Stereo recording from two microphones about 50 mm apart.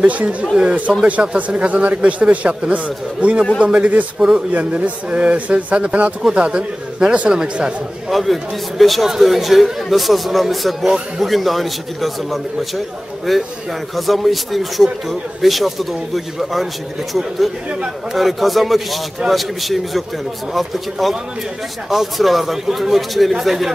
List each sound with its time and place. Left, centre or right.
0.0 s speech: right
8.1 s speech: centre
17.1 s speech: centre